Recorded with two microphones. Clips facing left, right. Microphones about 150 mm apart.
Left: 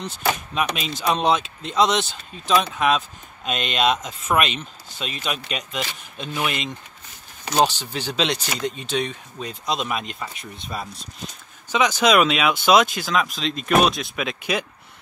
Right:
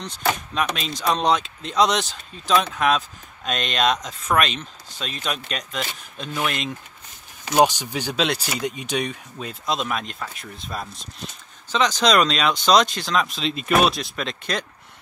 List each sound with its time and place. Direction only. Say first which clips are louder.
0.0 s speech: even; 5° left (ahead or behind)
7.5 s speech: right 2 dB; 15° right (ahead or behind); by 14.7 s 5° left (ahead or behind)